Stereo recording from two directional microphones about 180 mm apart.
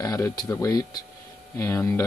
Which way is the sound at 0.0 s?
20° left (ahead or behind).